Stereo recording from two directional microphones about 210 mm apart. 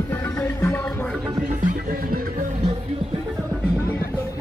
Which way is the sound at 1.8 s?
40° right (ahead or behind).